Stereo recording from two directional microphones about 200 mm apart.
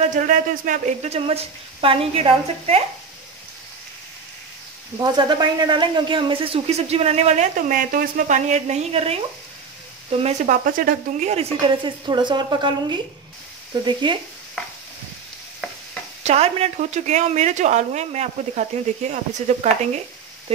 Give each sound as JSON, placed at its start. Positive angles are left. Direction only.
{"t": 0.1, "sound": "speech", "side_deg": -40}
{"t": 4.9, "sound": "a woman's voice", "side_deg": -20}
{"t": 14.0, "sound": "a woman's voice", "side_deg": -25}
{"t": 16.3, "sound": "speech", "side_deg": -30}